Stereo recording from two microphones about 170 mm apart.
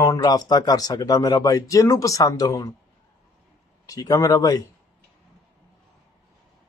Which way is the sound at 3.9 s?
20° left (ahead or behind).